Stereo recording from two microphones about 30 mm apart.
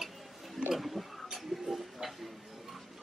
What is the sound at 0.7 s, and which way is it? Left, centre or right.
Speech, centre.